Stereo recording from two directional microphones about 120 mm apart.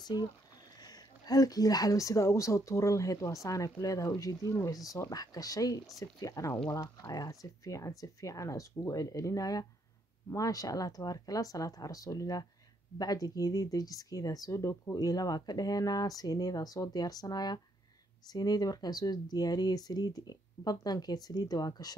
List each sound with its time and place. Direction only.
0.0 s speech: 35° left (ahead or behind)